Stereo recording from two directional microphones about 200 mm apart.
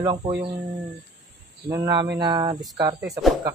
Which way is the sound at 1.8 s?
20° right (ahead or behind).